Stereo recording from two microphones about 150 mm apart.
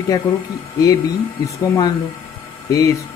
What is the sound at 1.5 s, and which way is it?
Speech, 20° left (ahead or behind).